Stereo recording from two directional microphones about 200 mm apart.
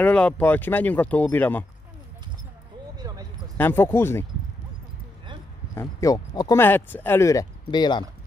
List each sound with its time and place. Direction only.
0.0 s speech: 5° left (ahead or behind)
3.5 s speech: 10° left (ahead or behind)
5.8 s speech: 15° left (ahead or behind)